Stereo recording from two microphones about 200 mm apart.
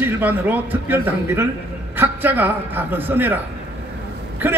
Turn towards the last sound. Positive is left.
turn(degrees=-10)  # may be behind; listen again after turning